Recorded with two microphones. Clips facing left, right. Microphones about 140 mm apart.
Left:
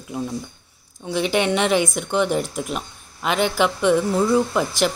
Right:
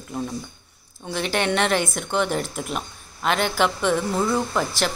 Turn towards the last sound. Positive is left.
turn(degrees=5)  # may be behind; listen again after turning